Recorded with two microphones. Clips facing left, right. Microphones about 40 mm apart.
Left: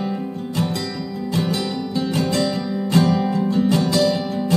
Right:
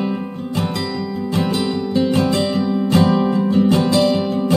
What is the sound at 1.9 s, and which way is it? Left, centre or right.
Music, right.